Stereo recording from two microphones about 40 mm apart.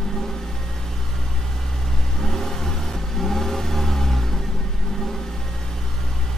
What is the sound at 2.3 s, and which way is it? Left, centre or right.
Vehicle, centre.